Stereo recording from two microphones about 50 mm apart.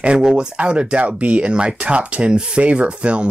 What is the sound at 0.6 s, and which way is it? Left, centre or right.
Speech, right.